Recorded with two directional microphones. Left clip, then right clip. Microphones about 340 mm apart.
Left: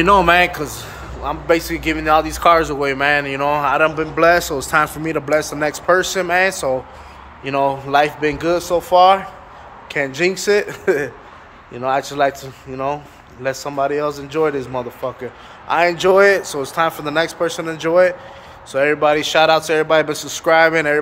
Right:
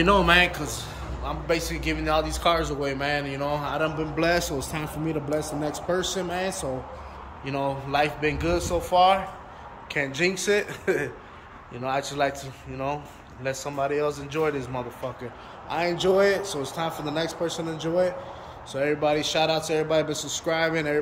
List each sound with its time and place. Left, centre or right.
0.0 s a man's voice: centre
15.7 s a man's voice: centre